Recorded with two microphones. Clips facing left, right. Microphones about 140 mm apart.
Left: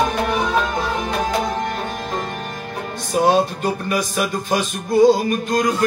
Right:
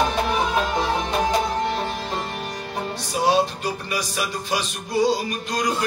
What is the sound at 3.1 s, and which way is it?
Music, 50° left (ahead or behind).